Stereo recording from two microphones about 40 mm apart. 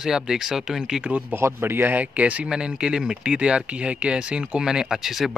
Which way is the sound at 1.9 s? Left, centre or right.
Right.